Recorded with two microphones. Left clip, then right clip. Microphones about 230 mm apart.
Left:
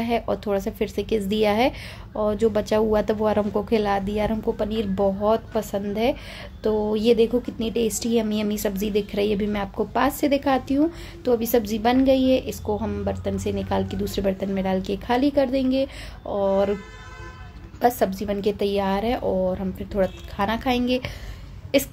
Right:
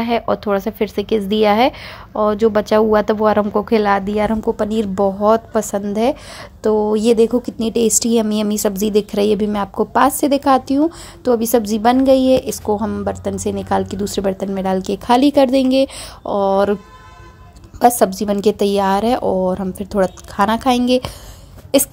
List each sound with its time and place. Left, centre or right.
0.0 s speech: centre
4.6 s a woman's voice: right
17.7 s a woman's voice: right